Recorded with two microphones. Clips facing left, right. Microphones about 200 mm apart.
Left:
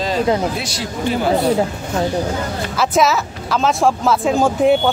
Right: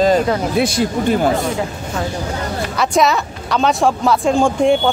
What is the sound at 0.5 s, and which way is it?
Speech, 55° right (ahead or behind).